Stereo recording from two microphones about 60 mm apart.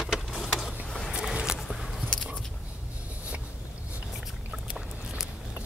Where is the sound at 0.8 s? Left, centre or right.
Centre.